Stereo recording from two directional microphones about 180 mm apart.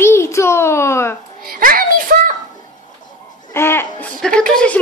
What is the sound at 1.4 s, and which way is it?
Speech, 55° right (ahead or behind).